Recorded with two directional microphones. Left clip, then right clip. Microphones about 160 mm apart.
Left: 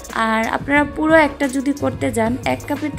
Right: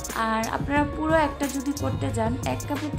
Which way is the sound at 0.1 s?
25° left (ahead or behind).